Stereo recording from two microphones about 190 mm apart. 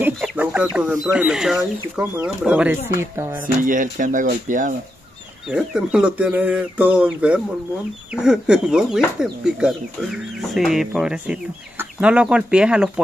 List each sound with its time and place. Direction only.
0.2 s chicken: 5° right (ahead or behind)
0.7 s speech: 5° right (ahead or behind)
3.6 s speech: 45° right (ahead or behind)
5.5 s speech: 5° right (ahead or behind)